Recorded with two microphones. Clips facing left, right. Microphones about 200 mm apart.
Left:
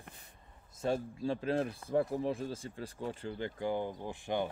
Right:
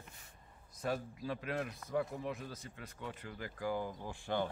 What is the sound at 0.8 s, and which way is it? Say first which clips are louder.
Speech: left 5 dB; 25° left (ahead or behind).